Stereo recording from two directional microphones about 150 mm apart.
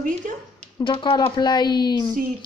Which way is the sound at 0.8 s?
30° left (ahead or behind).